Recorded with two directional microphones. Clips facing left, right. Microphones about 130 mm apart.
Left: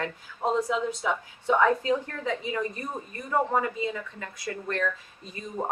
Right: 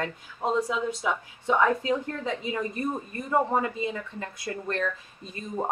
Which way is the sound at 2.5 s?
25° right (ahead or behind).